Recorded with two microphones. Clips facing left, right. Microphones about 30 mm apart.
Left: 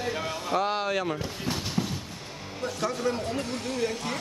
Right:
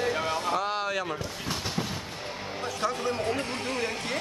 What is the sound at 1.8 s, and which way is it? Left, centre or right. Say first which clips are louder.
Train: left 4 dB; centre.